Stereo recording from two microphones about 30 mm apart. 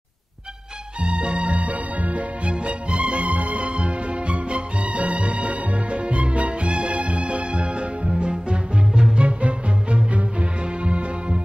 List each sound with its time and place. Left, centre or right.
1.0 s music: right
2.6 s music: right